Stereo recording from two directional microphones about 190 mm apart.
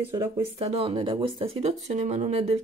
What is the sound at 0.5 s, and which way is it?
Speech, 30° right (ahead or behind).